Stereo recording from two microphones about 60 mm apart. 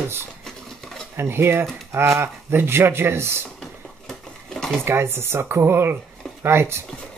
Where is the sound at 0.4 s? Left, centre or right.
Centre.